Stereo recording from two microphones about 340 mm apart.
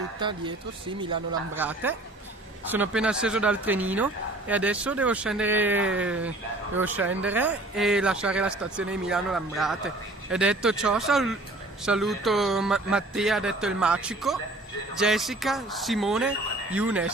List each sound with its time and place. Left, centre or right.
0.2 s speech: centre